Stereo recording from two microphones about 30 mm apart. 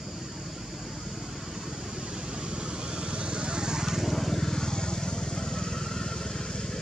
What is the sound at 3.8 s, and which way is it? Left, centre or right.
Vehicle, centre.